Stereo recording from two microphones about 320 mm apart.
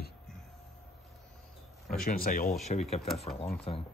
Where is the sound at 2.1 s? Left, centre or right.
Left.